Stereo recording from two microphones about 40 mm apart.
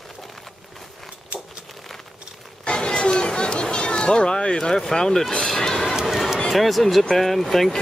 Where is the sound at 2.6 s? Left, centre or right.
Left.